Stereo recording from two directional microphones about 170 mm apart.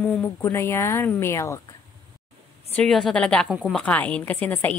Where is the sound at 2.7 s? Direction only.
Centre (ahead or behind).